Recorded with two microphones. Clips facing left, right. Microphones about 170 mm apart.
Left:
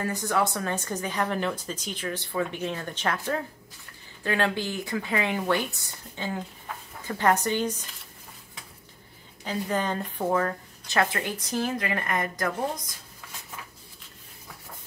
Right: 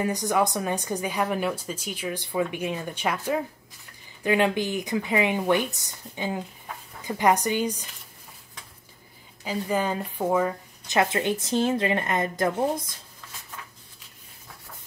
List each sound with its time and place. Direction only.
0.0 s speech: 15° right (ahead or behind)
9.4 s a woman's voice: 10° right (ahead or behind); by 12.9 s 25° right (ahead or behind)